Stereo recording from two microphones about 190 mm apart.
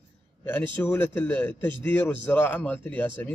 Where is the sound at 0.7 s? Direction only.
10° left (ahead or behind).